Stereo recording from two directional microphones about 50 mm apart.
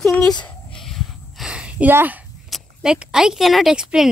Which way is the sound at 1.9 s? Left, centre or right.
Right.